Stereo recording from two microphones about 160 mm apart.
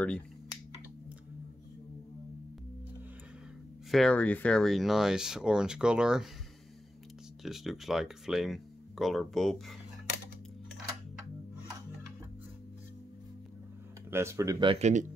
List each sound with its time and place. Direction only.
3.9 s speech: 5° left (ahead or behind)
7.4 s speech: centre (ahead or behind)
14.1 s speech: 15° right (ahead or behind)
14.8 s speech: 45° right (ahead or behind)